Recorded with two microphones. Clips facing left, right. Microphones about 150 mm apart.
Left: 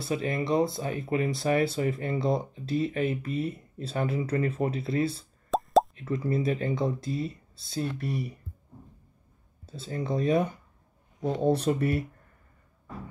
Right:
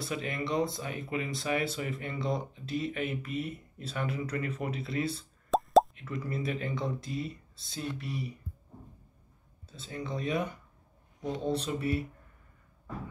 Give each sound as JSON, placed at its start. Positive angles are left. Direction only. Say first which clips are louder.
{"t": 0.0, "sound": "speech", "louder": "left 5 dB", "side_deg": 35}
{"t": 5.5, "sound": "plop", "louder": "even", "side_deg": 0}
{"t": 5.9, "sound": "speech", "louder": "left 7 dB", "side_deg": 35}
{"t": 9.7, "sound": "speech", "louder": "left 6 dB", "side_deg": 40}